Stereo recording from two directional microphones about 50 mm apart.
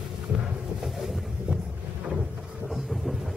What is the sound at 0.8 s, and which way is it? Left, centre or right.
Boat, centre.